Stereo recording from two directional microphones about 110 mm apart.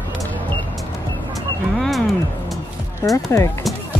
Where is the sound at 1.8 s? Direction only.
Centre (ahead or behind).